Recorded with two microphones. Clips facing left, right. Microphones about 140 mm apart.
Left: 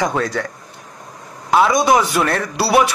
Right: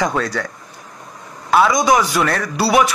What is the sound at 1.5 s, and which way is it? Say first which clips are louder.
Speech: even; 25° left (ahead or behind).